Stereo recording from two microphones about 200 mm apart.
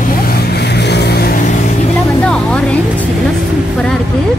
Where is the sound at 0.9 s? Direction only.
55° left (ahead or behind).